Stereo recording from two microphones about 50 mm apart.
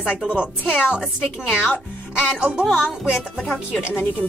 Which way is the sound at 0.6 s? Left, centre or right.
Left.